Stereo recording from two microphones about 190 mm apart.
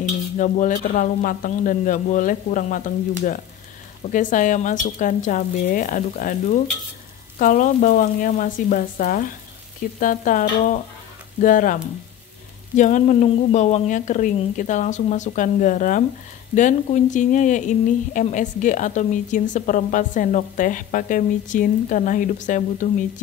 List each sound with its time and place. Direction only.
0.4 s speech: 45° left (ahead or behind)